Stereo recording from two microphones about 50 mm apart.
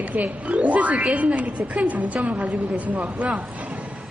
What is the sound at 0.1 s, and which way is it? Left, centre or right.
Speech, right.